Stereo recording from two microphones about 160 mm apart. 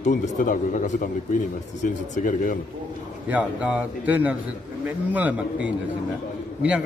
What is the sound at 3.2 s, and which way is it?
Speech, 10° right (ahead or behind).